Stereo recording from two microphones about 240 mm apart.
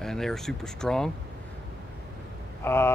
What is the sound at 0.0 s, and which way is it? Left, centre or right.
Speech, centre.